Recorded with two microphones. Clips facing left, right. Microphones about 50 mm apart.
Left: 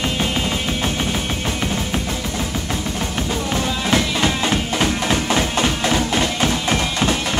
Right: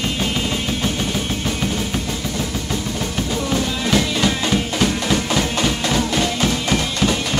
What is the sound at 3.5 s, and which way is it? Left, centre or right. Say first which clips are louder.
Music: even; centre.